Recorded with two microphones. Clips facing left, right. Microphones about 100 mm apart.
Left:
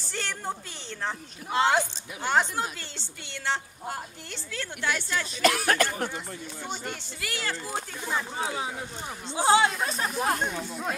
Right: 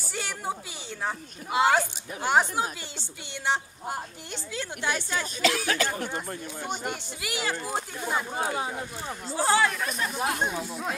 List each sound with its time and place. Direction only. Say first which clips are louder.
0.1 s a sound: right 1 dB; 10° right (ahead or behind)
1.0 s a woman's voice: right 1 dB; 10° right (ahead or behind)
5.4 s speech: left 3 dB; 50° left (ahead or behind)
6.1 s speech: right 3 dB; 50° right (ahead or behind)
6.8 s a woman's voice: right 3 dB; 15° right (ahead or behind)
8.4 s speech: right 2 dB; 45° right (ahead or behind)
9.4 s speech: left 2 dB; 20° left (ahead or behind)
10.4 s speech: right 1 dB; 10° right (ahead or behind)